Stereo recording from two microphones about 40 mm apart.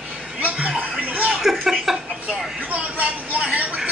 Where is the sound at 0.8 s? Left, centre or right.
Right.